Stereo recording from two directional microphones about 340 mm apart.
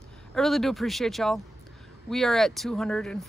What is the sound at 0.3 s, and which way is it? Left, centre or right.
Speech, centre.